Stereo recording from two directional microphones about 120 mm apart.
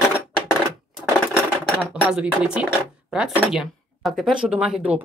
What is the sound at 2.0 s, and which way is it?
Speech, 10° right (ahead or behind).